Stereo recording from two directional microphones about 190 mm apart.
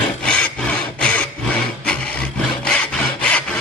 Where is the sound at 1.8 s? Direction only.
5° left (ahead or behind).